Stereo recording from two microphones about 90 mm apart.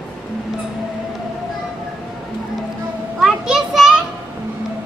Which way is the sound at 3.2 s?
5° right (ahead or behind).